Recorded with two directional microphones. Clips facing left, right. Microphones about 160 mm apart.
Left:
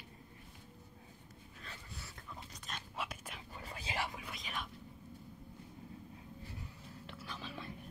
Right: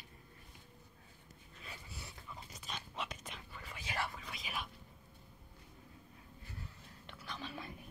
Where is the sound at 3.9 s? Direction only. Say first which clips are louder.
Even; 15° left (ahead or behind).